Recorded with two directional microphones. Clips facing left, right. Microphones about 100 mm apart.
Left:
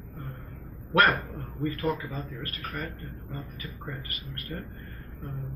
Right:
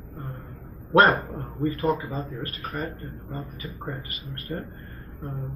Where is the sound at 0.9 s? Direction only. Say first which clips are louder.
Right 5 dB; 25° right (ahead or behind).